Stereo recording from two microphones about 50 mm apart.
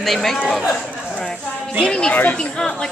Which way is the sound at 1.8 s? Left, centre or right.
Centre.